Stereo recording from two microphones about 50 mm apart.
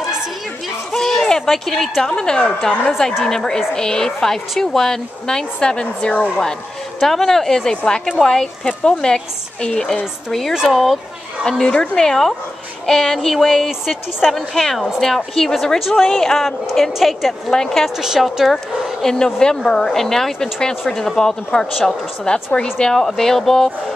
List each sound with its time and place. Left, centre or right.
0.9 s a sound: centre
1.5 s a woman's voice: centre
2.0 s a woman's voice: centre
7.0 s a woman's voice: centre
10.5 s speech: centre
11.6 s a woman's voice: centre
14.3 s a woman's voice: centre
17.9 s a woman's voice: centre
19.9 s a woman's voice: centre